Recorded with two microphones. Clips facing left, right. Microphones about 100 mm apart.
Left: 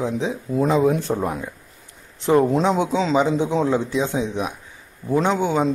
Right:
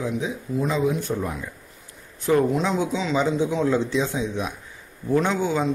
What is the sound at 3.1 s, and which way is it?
Speech, 20° left (ahead or behind).